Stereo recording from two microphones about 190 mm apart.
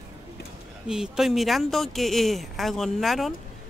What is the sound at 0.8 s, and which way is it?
Speech, centre (ahead or behind).